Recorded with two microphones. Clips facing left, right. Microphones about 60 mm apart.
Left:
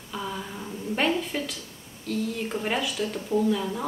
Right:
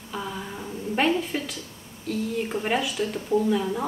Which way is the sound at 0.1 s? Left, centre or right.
Centre.